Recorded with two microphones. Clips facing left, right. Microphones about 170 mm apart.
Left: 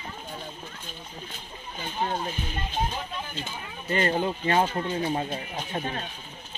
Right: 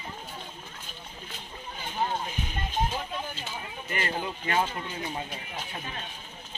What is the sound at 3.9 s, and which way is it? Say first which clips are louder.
Speech: left 7 dB; 30° left (ahead or behind).